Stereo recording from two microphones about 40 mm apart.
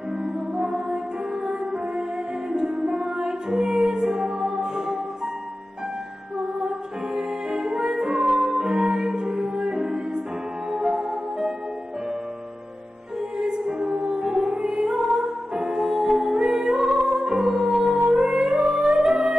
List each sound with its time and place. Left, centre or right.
0.2 s music: centre
7.2 s music: centre
13.4 s music: centre